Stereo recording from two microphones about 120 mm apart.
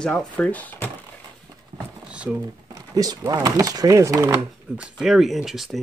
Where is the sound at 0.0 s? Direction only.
5° left (ahead or behind).